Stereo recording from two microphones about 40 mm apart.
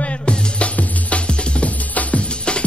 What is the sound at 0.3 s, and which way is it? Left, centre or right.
Music, left.